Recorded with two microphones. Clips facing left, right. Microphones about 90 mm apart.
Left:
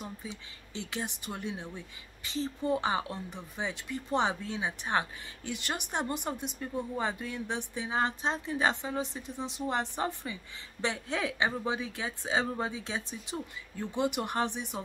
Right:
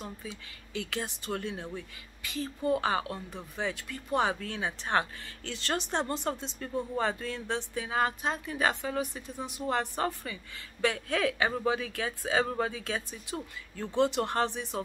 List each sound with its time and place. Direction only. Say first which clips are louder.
0.0 s speech: even; 20° left (ahead or behind)